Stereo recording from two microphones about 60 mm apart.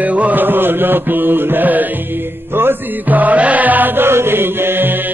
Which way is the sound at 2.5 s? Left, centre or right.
Right.